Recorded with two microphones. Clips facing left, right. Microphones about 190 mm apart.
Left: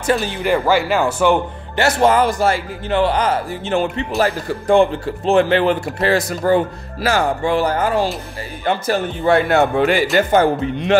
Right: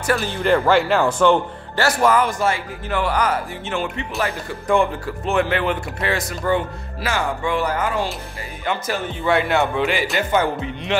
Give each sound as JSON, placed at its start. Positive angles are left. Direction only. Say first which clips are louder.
{"t": 0.0, "sound": "a man's voice", "louder": "left 3 dB", "side_deg": 20}
{"t": 0.4, "sound": "speech", "louder": "right 3 dB", "side_deg": 5}
{"t": 1.8, "sound": "a man's voice", "louder": "left 3 dB", "side_deg": 25}